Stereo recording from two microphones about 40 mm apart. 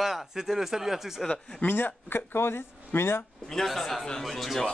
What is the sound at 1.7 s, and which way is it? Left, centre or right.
Speech, left.